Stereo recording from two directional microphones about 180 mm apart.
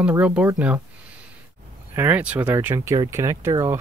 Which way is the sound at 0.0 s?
5° right (ahead or behind).